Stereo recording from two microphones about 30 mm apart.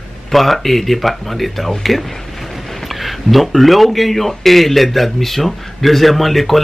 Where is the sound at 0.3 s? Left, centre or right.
Centre.